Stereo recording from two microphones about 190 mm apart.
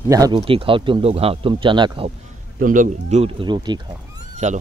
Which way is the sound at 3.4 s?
25° right (ahead or behind).